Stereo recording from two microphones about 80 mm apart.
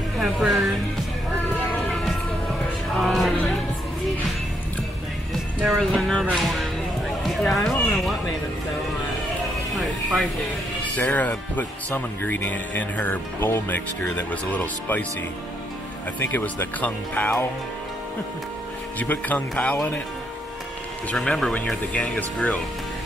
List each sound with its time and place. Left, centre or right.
0.2 s speech: centre
1.9 s music: centre
5.9 s speech: centre
7.2 s horse: centre
9.8 s music: centre
10.8 s speech: centre
16.2 s speech: left
18.9 s speech: left
21.1 s speech: centre